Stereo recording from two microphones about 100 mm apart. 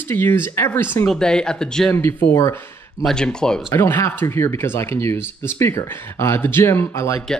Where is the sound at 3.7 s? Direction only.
25° left (ahead or behind).